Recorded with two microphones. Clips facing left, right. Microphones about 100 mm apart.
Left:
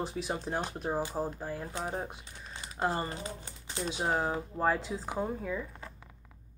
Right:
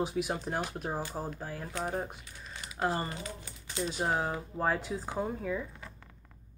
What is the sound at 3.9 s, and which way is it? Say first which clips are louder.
Speech: left 1 dB; centre (ahead or behind).